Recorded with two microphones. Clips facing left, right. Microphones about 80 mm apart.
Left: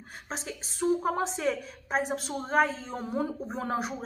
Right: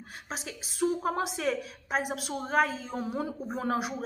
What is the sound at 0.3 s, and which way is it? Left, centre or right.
A woman's voice, centre.